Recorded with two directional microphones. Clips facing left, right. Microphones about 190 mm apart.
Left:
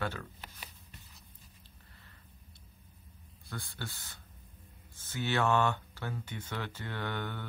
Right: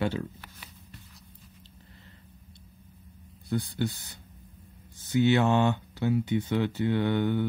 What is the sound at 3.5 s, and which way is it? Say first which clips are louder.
Speech: right 14 dB; 20° right (ahead or behind).